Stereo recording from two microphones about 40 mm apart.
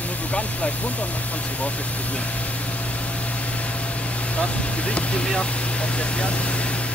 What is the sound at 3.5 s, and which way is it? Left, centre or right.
Vehicle, left.